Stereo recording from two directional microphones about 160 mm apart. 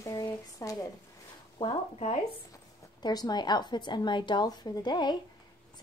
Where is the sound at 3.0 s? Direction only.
25° left (ahead or behind).